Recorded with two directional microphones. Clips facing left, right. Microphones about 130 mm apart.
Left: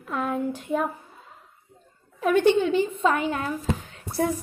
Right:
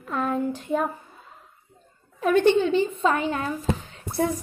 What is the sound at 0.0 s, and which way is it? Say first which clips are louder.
Speech: right 1 dB; 5° left (ahead or behind).